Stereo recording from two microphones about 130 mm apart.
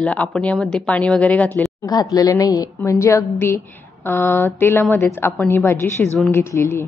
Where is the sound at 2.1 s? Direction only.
25° left (ahead or behind).